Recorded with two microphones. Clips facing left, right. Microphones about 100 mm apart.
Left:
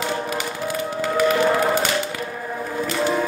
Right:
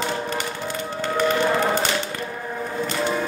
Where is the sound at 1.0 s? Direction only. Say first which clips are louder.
Left 2 dB; 5° left (ahead or behind).